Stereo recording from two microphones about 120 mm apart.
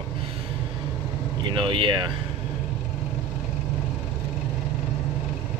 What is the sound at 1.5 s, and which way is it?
Speech, 45° right (ahead or behind).